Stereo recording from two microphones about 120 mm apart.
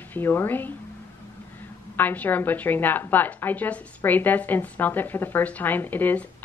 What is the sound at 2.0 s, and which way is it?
A woman's voice, 15° left (ahead or behind).